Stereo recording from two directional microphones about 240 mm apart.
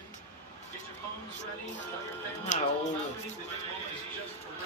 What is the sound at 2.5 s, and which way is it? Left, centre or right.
Speech, left.